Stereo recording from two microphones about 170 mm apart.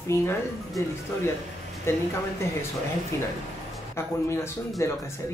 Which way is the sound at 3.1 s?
15° left (ahead or behind).